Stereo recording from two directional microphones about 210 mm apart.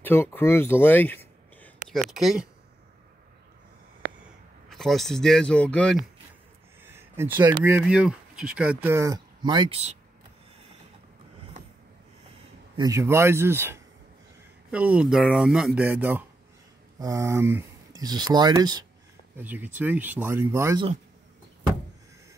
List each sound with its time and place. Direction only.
0.0 s a sound: 10° left (ahead or behind)
2.0 s speech: centre (ahead or behind)
4.6 s speech: centre (ahead or behind)
6.8 s speech: 10° right (ahead or behind); by 9.9 s 30° right (ahead or behind)
12.7 s speech: 15° right (ahead or behind)
19.3 s speech: 10° right (ahead or behind)